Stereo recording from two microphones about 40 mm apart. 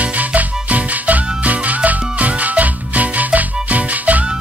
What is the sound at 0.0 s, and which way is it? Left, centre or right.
Music, right.